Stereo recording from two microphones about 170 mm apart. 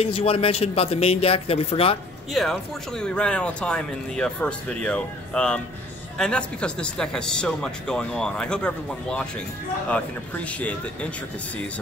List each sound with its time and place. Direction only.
0.0 s a man's voice: 35° left (ahead or behind)
2.3 s speech: centre (ahead or behind)